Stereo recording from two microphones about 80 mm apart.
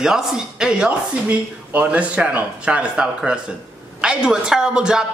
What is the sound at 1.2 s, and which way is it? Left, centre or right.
Speech, centre.